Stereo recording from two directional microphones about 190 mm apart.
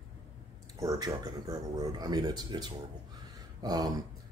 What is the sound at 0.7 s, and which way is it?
Speech, 20° right (ahead or behind).